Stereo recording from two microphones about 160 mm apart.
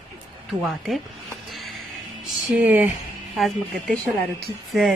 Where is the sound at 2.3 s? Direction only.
Centre (ahead or behind).